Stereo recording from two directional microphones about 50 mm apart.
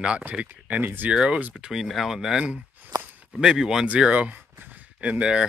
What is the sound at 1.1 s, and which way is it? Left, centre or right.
Speech, centre.